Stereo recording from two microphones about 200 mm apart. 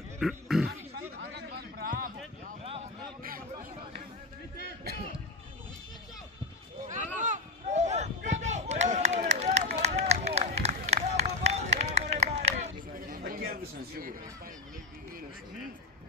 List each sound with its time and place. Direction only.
0.2 s throat clearing: centre (ahead or behind)
0.7 s music: 55° right (ahead or behind)
2.6 s a sound: 30° right (ahead or behind)
7.2 s chop: 35° right (ahead or behind)
9.3 s run: 35° right (ahead or behind)
13.5 s a sound: 50° right (ahead or behind)